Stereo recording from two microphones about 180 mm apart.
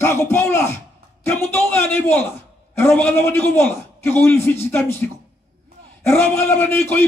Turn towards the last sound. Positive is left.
turn(degrees=10)  # may be behind; listen again after turning